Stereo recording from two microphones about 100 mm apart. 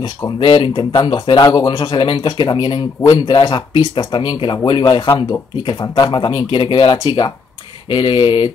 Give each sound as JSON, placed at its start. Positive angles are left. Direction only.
{"t": 0.4, "sound": "speech", "side_deg": 60}
{"t": 1.3, "sound": "speech", "side_deg": 40}
{"t": 1.8, "sound": "speech", "side_deg": 60}
{"t": 2.2, "sound": "speech", "side_deg": 50}